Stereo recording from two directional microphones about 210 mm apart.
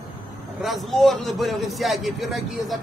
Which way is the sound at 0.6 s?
Centre (ahead or behind).